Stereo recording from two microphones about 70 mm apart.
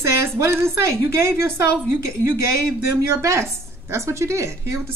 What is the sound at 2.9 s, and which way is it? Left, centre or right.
A woman's voice, right.